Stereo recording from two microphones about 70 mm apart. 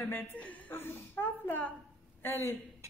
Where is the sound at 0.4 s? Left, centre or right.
Left.